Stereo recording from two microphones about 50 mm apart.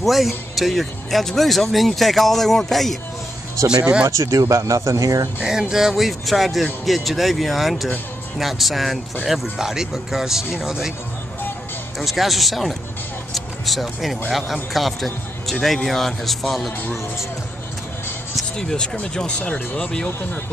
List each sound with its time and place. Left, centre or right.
0.0 s speech: centre
4.1 s speech: right
5.4 s speech: centre
12.0 s speech: centre
18.6 s speech: centre